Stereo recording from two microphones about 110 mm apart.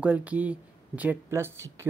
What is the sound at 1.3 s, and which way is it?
Speech, 25° right (ahead or behind).